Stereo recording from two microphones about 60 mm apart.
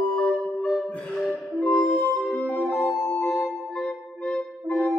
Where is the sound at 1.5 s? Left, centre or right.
Centre.